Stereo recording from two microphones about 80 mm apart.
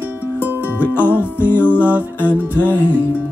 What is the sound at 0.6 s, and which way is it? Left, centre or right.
Music, left.